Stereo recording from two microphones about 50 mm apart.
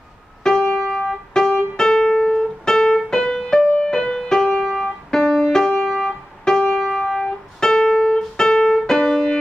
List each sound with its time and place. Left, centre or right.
0.4 s music: centre
1.8 s piano: centre
3.1 s music: centre